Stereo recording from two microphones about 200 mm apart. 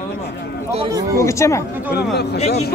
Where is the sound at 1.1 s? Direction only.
15° left (ahead or behind).